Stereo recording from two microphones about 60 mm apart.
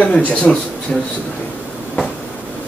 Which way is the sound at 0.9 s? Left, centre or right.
Centre.